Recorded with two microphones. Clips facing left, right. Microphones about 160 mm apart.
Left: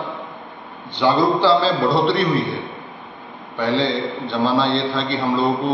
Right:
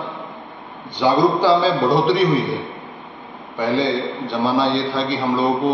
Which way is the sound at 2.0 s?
10° right (ahead or behind).